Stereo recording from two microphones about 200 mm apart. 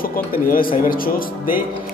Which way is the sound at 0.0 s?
45° left (ahead or behind).